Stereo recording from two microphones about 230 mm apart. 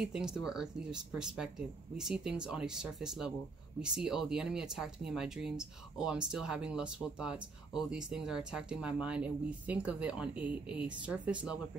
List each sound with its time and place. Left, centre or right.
0.0 s speech: centre